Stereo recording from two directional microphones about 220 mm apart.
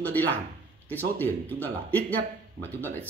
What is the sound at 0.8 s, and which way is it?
Speech, 10° left (ahead or behind).